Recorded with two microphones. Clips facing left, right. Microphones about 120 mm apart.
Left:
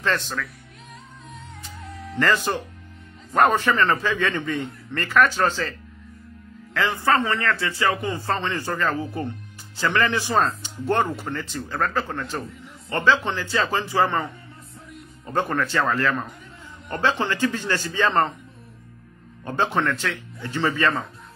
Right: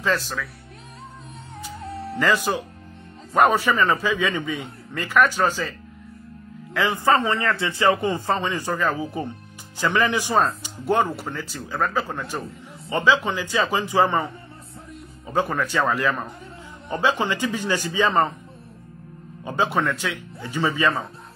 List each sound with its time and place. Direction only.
0.0 s a man's voice: 5° right (ahead or behind)
1.8 s music: 30° right (ahead or behind)
2.1 s a man's voice: 10° right (ahead or behind)
15.2 s a man's voice: 5° right (ahead or behind)
19.4 s a man's voice: 10° right (ahead or behind)